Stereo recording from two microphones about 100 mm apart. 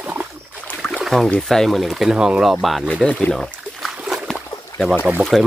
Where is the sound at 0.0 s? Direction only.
15° right (ahead or behind).